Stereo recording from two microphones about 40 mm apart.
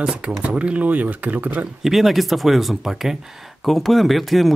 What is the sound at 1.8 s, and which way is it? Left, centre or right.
Speech, centre.